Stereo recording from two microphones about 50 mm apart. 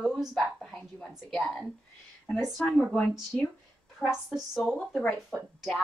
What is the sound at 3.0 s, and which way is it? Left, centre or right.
Speech, left.